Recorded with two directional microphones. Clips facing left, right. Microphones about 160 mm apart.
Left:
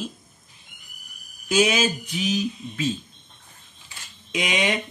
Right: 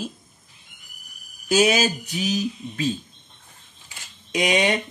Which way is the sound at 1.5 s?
40° right (ahead or behind).